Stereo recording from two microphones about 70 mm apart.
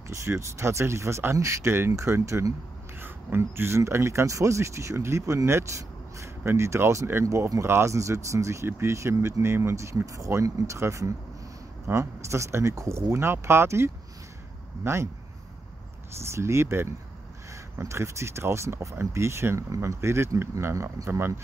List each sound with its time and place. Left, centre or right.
0.1 s speech: right
3.0 s speech: right
7.2 s speech: right
7.6 s speech: right
16.2 s speech: right